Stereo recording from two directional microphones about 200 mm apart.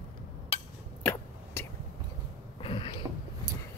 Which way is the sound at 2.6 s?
25° left (ahead or behind).